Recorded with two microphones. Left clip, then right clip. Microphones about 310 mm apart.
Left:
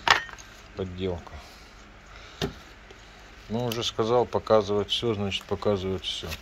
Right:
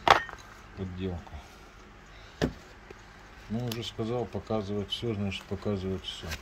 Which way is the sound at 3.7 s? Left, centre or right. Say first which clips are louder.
Left 11 dB; centre.